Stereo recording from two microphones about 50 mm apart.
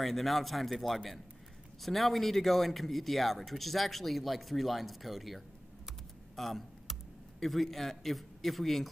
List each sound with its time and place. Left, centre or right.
0.0 s speech: centre
6.3 s computer keyboard: centre